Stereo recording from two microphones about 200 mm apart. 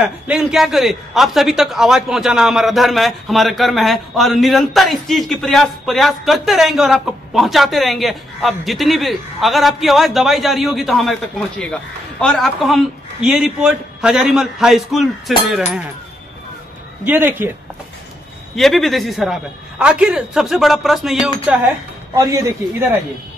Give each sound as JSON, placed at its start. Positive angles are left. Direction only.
{"t": 0.0, "sound": "a man's voice", "side_deg": -5}
{"t": 17.0, "sound": "a man's voice", "side_deg": -10}
{"t": 18.6, "sound": "a man's voice", "side_deg": 0}
{"t": 22.1, "sound": "a man's voice", "side_deg": -15}